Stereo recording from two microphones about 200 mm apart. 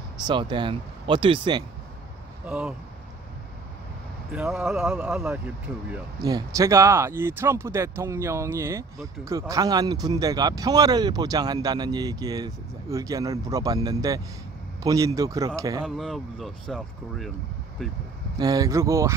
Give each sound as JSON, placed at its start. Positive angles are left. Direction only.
{"t": 0.3, "sound": "speech", "side_deg": -25}
{"t": 2.4, "sound": "speech", "side_deg": -5}
{"t": 4.3, "sound": "speech", "side_deg": -5}
{"t": 6.2, "sound": "speech", "side_deg": -15}
{"t": 15.8, "sound": "speech", "side_deg": 0}
{"t": 18.4, "sound": "speech", "side_deg": -20}